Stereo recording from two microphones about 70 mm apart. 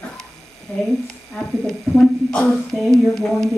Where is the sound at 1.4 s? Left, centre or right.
Centre.